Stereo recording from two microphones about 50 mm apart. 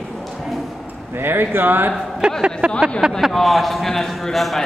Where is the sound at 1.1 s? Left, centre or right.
Right.